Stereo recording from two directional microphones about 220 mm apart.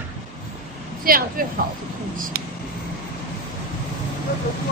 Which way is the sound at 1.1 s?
40° right (ahead or behind).